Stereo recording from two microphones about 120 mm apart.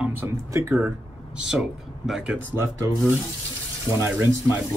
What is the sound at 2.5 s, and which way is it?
Speech, 25° right (ahead or behind).